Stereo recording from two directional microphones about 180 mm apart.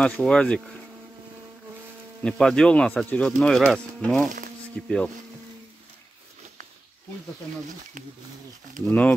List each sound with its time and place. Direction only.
0.0 s speech: 5° left (ahead or behind)
2.2 s speech: 5° left (ahead or behind)
8.8 s speech: 10° left (ahead or behind)